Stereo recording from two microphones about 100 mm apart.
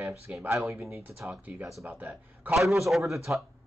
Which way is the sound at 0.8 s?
25° right (ahead or behind).